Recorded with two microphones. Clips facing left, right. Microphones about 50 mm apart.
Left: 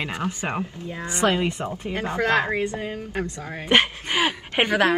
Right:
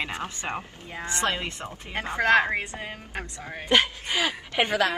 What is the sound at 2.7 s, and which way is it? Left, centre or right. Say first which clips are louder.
Speech: left 6 dB; right.